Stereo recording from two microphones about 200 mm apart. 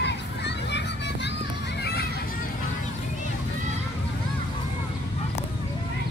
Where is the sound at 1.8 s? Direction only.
55° left (ahead or behind).